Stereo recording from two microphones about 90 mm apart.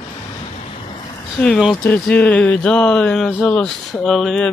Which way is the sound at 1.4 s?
15° left (ahead or behind).